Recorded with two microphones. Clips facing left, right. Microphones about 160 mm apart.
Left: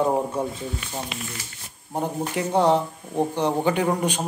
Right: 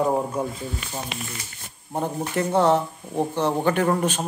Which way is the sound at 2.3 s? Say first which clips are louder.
Right 1 dB; 15° left (ahead or behind).